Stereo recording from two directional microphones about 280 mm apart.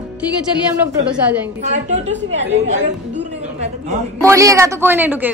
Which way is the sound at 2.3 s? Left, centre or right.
Right.